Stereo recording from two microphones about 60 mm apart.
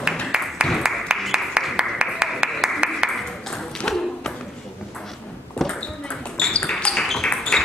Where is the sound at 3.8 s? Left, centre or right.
Centre.